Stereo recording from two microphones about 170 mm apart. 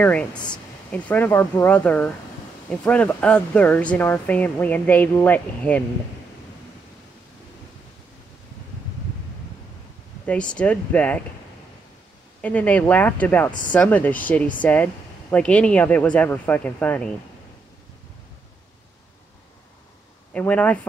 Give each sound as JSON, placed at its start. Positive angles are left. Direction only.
{"t": 0.0, "sound": "speech", "side_deg": 5}
{"t": 10.5, "sound": "speech", "side_deg": 10}
{"t": 12.4, "sound": "speech", "side_deg": 10}
{"t": 13.5, "sound": "speech", "side_deg": 50}
{"t": 13.7, "sound": "speech", "side_deg": 10}
{"t": 20.3, "sound": "speech", "side_deg": 10}